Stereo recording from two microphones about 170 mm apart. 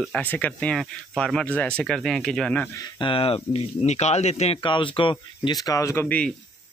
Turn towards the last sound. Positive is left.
turn(degrees=10)  # may be behind; listen again after turning